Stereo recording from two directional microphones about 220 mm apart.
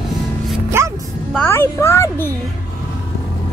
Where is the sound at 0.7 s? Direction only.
10° right (ahead or behind).